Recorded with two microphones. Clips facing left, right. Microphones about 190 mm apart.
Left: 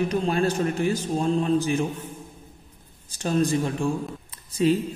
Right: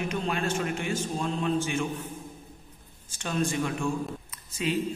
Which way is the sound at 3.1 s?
35° left (ahead or behind).